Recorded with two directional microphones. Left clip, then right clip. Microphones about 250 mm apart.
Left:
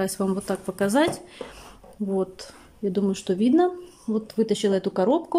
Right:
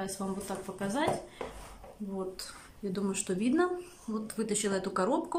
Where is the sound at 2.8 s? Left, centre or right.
Left.